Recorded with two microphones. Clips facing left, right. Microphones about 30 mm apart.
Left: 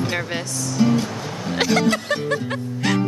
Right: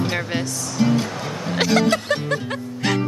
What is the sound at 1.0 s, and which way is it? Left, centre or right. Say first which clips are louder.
Music: right 1 dB; right.